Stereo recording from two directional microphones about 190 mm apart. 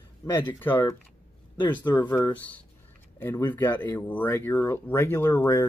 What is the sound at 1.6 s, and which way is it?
Speech, 25° left (ahead or behind).